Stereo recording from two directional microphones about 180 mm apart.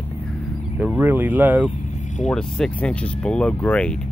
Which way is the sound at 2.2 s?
5° left (ahead or behind).